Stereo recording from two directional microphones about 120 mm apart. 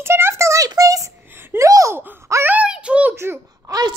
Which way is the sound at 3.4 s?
30° right (ahead or behind).